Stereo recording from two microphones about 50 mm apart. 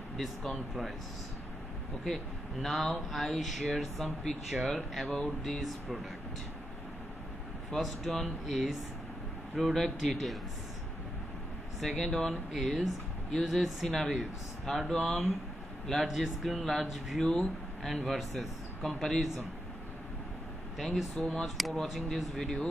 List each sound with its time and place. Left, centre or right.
0.2 s speech: centre
2.0 s speech: centre
8.0 s speech: centre
11.8 s speech: centre
16.1 s speech: centre
20.7 s speech: centre